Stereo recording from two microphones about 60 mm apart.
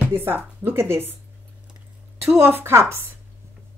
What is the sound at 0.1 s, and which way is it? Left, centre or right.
Speech, right.